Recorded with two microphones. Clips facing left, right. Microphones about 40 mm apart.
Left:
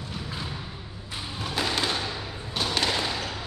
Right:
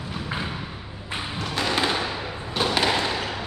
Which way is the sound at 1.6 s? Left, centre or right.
Centre.